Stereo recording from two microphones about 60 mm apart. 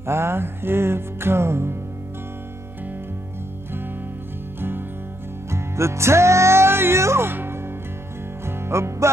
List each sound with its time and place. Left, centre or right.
0.0 s music: right
4.6 s music: right
5.5 s music: right